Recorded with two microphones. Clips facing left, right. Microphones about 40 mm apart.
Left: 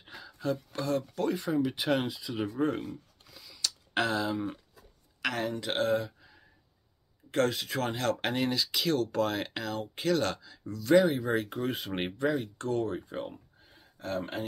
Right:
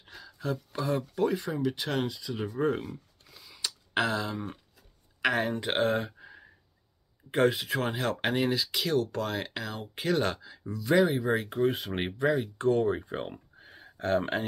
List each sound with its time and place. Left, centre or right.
0.0 s a sound: centre
0.7 s speech: centre
1.3 s speech: centre
3.4 s a sound: right
3.9 s speech: centre
5.2 s speech: right
7.2 s speech: centre
9.8 s speech: centre
12.5 s speech: right
13.7 s a sound: right